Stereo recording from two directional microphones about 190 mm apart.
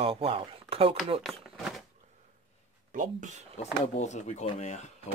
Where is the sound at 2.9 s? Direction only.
45° right (ahead or behind).